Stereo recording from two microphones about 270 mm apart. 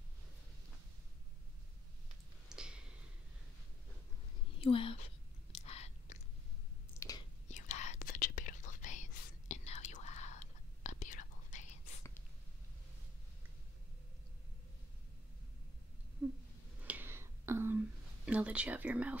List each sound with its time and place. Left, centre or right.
2.5 s a sound: centre
4.6 s a sound: centre
5.7 s chewing: left
7.0 s whispering: centre
7.4 s whispering: left
16.8 s whispering: centre